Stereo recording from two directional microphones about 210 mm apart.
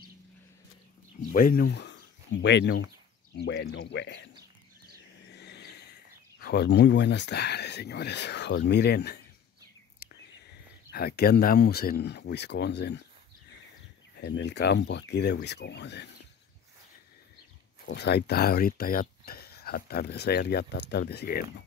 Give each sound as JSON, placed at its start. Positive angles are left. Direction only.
{"t": 1.3, "sound": "speech", "side_deg": 45}
{"t": 5.3, "sound": "vehicle", "side_deg": 55}
{"t": 6.4, "sound": "speech", "side_deg": 50}
{"t": 10.9, "sound": "speech", "side_deg": 50}
{"t": 14.1, "sound": "speech", "side_deg": 55}
{"t": 17.8, "sound": "speech", "side_deg": 50}